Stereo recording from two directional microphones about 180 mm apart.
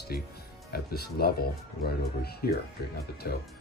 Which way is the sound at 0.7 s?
60° left (ahead or behind).